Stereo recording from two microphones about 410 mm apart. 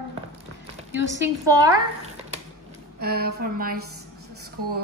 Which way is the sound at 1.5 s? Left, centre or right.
Centre.